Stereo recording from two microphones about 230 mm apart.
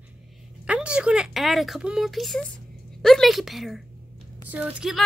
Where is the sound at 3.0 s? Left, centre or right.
Centre.